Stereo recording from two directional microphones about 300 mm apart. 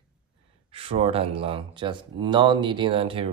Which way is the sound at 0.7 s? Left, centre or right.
Centre.